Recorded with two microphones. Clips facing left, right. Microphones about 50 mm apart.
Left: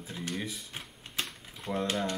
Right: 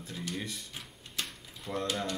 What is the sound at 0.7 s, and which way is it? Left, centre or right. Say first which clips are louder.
Typewriter: left 3 dB; left.